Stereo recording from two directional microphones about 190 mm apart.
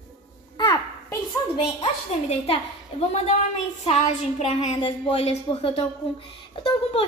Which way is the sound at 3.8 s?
35° left (ahead or behind).